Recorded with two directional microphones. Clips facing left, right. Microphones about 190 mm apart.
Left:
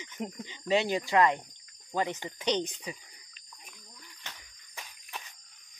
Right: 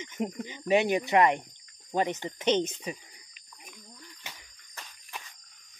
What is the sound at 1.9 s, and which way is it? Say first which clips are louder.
Speech: right 3 dB; 20° right (ahead or behind).